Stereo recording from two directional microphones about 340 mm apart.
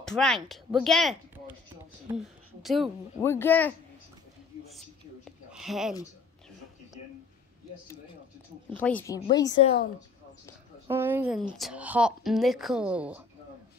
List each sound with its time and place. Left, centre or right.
0.0 s speech: centre
4.6 s a sound: centre
8.6 s a woman's voice: centre
10.9 s speech: centre